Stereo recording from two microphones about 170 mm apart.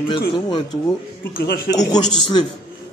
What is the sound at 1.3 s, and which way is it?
Speech, 60° left (ahead or behind).